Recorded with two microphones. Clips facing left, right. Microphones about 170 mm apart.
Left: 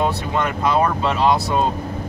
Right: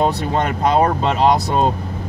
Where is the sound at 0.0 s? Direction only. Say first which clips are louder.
Right 3 dB; 40° right (ahead or behind).